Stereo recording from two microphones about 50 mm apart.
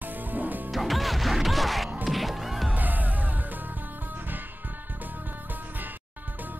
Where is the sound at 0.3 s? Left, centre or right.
Right.